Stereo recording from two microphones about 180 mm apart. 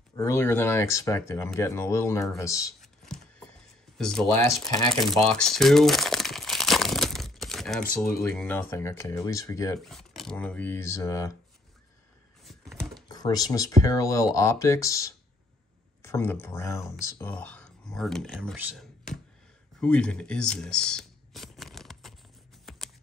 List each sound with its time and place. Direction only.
0.1 s speech: 15° left (ahead or behind)
2.8 s a sound: 5° left (ahead or behind)
4.0 s speech: 5° left (ahead or behind)
5.0 s crumpling: 5° left (ahead or behind)
8.2 s speech: 5° left (ahead or behind)
9.8 s speech: centre (ahead or behind); by 11.3 s 15° left (ahead or behind)
12.4 s a sound: centre (ahead or behind)
13.1 s speech: 20° left (ahead or behind)
17.3 s speech: 5° left (ahead or behind)
22.7 s a sound: centre (ahead or behind)